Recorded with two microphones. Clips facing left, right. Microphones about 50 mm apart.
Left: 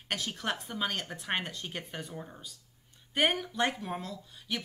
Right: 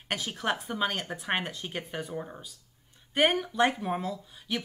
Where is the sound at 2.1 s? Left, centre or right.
Centre.